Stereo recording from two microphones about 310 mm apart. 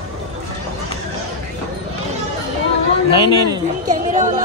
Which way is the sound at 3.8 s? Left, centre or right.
Right.